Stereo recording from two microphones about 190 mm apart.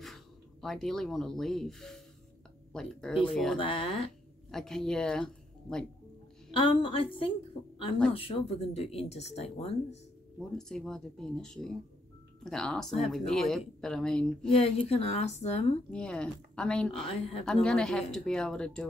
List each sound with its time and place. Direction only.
0.0 s speech: centre (ahead or behind)
3.5 s a woman's voice: 30° left (ahead or behind)
4.5 s speech: centre (ahead or behind)
6.5 s a woman's voice: 25° left (ahead or behind)
8.1 s a woman's voice: 30° left (ahead or behind)
10.7 s speech: 5° left (ahead or behind)
14.5 s a woman's voice: 30° left (ahead or behind)
15.9 s speech: 5° left (ahead or behind)
17.1 s a woman's voice: 30° left (ahead or behind)
17.5 s speech: 5° left (ahead or behind)